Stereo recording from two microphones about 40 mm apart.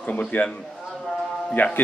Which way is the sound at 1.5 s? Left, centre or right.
Left.